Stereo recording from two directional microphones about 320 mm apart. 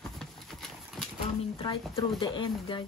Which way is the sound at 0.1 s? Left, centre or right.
Centre.